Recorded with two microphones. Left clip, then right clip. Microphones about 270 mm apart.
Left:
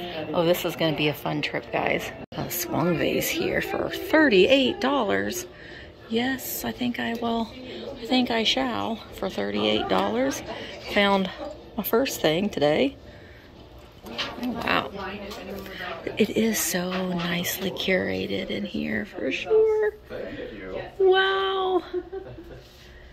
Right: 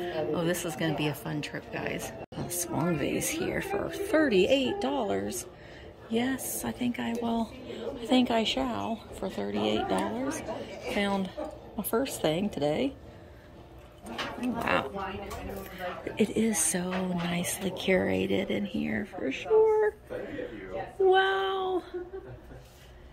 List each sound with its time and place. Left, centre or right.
0.3 s a woman's voice: centre
14.4 s speech: centre
21.1 s child singing: centre